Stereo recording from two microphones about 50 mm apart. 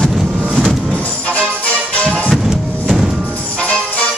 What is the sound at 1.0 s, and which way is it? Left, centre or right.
Music, left.